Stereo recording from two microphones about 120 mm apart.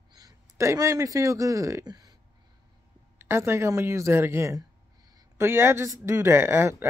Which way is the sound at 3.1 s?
20° right (ahead or behind).